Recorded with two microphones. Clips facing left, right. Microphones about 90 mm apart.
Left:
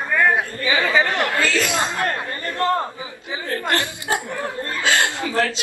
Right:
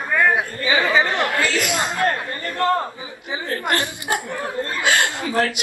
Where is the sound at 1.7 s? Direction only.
20° left (ahead or behind).